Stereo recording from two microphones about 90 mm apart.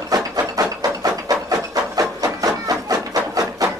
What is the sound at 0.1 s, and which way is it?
Wood, 40° right (ahead or behind).